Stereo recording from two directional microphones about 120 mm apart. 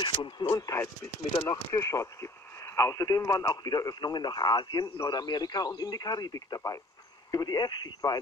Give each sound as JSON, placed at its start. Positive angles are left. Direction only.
{"t": 0.0, "sound": "speech", "side_deg": 40}